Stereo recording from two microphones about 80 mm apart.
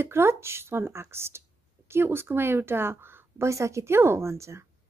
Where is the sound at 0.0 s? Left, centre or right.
Right.